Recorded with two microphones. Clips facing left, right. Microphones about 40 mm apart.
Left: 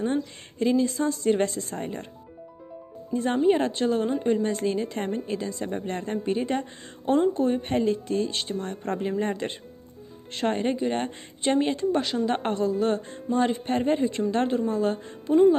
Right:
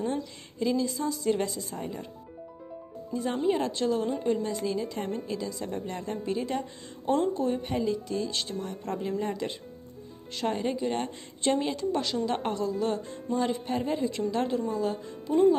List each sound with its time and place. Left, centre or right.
0.0 s a woman's voice: left
3.1 s a woman's voice: left
4.5 s a woman's voice: left
8.6 s a woman's voice: left
13.7 s a woman's voice: left